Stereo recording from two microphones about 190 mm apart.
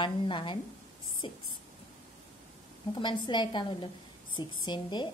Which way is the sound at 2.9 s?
25° left (ahead or behind).